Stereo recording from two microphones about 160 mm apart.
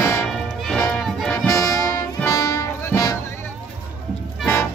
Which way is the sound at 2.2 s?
20° left (ahead or behind).